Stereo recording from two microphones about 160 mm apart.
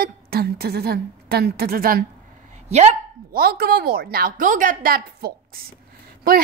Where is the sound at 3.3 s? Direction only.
70° right (ahead or behind).